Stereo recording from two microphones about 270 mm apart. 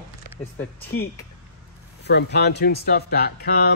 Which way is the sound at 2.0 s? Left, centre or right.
Left.